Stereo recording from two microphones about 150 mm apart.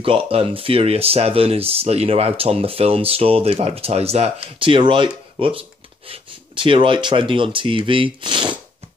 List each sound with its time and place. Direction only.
0.0 s speech: 35° right (ahead or behind)